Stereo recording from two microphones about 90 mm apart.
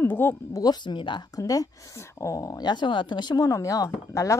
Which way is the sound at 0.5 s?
50° left (ahead or behind).